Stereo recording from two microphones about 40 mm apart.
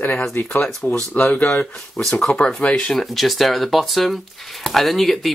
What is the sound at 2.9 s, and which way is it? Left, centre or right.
Speech, centre.